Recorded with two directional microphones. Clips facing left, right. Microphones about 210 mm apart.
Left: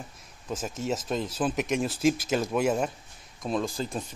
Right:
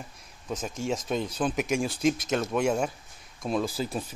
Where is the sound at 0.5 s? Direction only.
5° left (ahead or behind).